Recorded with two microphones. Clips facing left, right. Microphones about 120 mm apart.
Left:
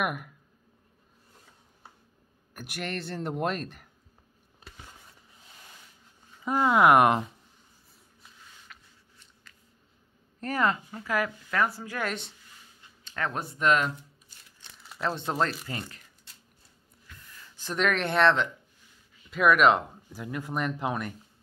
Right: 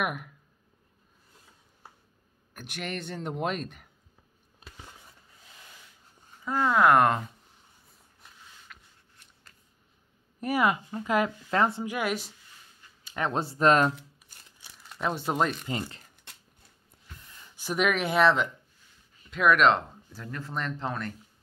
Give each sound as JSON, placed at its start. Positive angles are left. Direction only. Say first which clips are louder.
{"t": 0.0, "sound": "speech", "louder": "left 1 dB", "side_deg": 0}
{"t": 2.5, "sound": "speech", "louder": "left 1 dB", "side_deg": 5}
{"t": 6.4, "sound": "speech", "louder": "left 1 dB", "side_deg": 15}
{"t": 8.7, "sound": "a sound", "louder": "even", "side_deg": 0}
{"t": 10.4, "sound": "a woman's voice", "louder": "right 2 dB", "side_deg": -10}
{"t": 13.0, "sound": "speech", "louder": "right 3 dB", "side_deg": -20}
{"t": 14.6, "sound": "crumpling", "louder": "even", "side_deg": 0}
{"t": 16.3, "sound": "a sound", "louder": "right 7 dB", "side_deg": -65}
{"t": 17.1, "sound": "a sound", "louder": "even", "side_deg": -25}
{"t": 17.6, "sound": "speech", "louder": "right 1 dB", "side_deg": -10}